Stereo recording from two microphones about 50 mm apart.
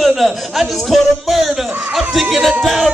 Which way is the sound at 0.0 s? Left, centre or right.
Centre.